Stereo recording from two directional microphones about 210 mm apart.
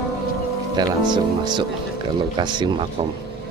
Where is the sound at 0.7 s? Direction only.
20° right (ahead or behind).